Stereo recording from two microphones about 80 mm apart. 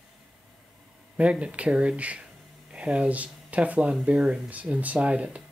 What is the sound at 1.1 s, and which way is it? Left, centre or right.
Speech, centre.